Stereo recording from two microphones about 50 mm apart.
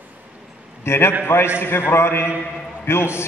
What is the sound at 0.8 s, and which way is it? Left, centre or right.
A man's voice, left.